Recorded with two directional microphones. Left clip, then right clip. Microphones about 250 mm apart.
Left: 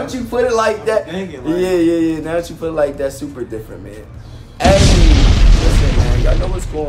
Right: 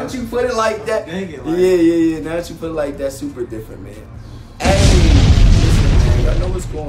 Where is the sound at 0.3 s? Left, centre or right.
Centre.